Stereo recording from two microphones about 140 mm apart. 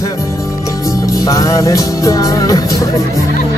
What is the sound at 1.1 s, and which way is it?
Music, 25° left (ahead or behind).